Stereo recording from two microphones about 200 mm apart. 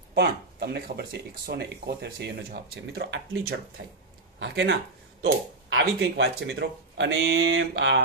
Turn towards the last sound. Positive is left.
turn(degrees=-65)  # may be behind; listen again after turning